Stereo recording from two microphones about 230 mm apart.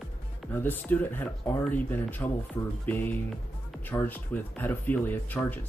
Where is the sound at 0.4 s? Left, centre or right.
Centre.